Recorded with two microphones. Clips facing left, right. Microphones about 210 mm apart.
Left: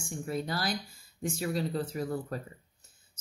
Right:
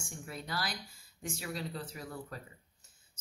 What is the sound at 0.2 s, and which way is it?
Speech, 45° left (ahead or behind).